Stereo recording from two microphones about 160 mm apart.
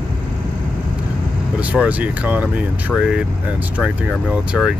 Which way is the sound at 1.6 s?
10° right (ahead or behind).